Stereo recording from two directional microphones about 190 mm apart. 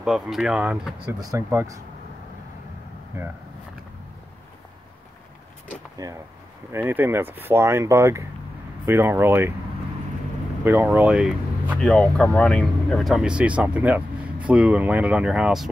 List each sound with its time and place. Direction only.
0.0 s speech: 5° right (ahead or behind)
1.2 s speech: 15° right (ahead or behind)
6.0 s speech: 15° right (ahead or behind)
10.6 s speech: 10° right (ahead or behind)